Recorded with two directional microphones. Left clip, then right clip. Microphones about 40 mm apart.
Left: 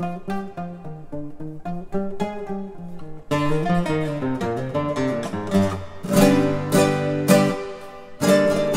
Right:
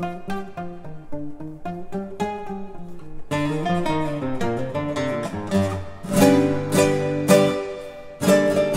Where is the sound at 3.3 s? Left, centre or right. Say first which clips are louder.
Left 2 dB; centre.